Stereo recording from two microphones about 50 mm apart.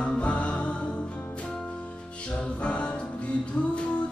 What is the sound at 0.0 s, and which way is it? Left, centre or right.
Music, left.